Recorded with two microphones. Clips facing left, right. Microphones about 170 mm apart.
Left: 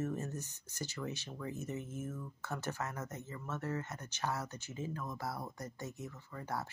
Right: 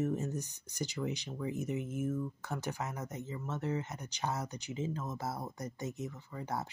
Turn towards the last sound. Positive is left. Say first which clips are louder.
# right 2 dB
turn(degrees=-20)  # may be behind; listen again after turning